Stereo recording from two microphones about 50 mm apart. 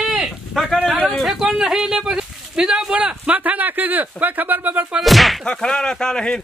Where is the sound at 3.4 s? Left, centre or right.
Right.